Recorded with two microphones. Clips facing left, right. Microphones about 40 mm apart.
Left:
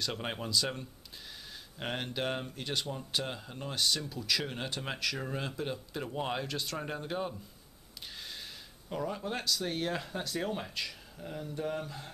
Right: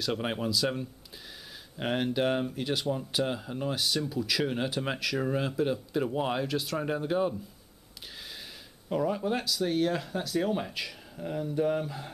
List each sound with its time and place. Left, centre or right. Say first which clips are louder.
0.0 s speech: right 6 dB; centre
8.8 s speech: right 7 dB; centre